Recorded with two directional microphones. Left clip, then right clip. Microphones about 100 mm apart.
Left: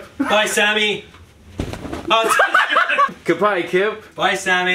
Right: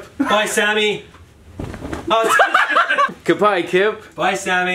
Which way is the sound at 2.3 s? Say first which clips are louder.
Right 3 dB; 5° right (ahead or behind).